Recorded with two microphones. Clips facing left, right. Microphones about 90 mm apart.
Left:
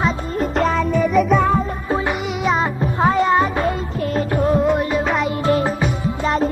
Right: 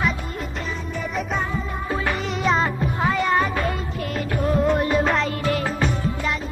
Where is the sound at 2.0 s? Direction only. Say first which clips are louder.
Right 1 dB; 15° left (ahead or behind).